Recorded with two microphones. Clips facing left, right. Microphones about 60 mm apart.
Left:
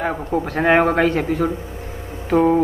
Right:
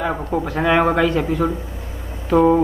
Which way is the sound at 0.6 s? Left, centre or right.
Left.